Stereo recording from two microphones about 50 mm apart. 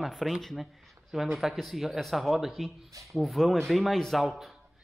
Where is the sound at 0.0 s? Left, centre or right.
Centre.